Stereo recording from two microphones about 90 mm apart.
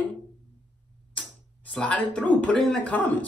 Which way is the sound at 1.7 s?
10° left (ahead or behind).